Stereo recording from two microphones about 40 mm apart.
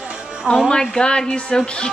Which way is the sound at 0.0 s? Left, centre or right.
Right.